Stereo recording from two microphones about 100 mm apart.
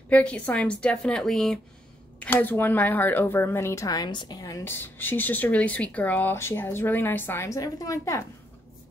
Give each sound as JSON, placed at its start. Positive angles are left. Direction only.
{"t": 0.1, "sound": "a woman's voice", "side_deg": 10}
{"t": 2.1, "sound": "speech", "side_deg": 20}
{"t": 4.6, "sound": "speech", "side_deg": 20}